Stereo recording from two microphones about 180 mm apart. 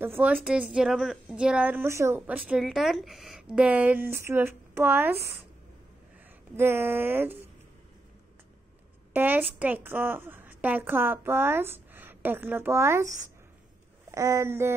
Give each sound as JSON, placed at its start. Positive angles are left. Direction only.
{"t": 0.0, "sound": "a woman's voice", "side_deg": -10}
{"t": 6.5, "sound": "a woman's voice", "side_deg": -15}
{"t": 9.1, "sound": "a woman's voice", "side_deg": -10}